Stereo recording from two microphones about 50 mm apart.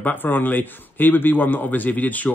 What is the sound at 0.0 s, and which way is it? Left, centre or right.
A man's voice, left.